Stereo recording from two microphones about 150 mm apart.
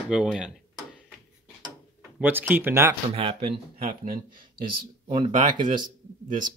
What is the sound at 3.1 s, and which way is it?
Speech, 40° right (ahead or behind).